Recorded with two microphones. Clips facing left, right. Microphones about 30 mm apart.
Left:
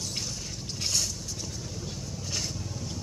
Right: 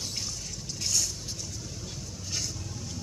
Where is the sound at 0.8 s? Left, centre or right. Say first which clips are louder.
Even; left.